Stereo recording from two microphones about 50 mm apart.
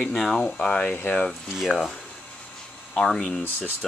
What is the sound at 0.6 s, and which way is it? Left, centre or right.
Speech, left.